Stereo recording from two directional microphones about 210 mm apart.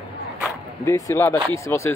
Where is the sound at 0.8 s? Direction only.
15° left (ahead or behind).